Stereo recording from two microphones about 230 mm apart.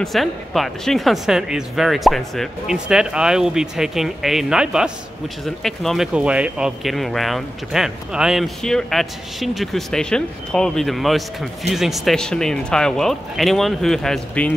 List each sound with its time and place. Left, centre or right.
0.0 s speech: centre